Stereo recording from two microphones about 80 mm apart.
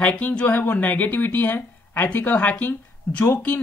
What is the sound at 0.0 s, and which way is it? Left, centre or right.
Speech, centre.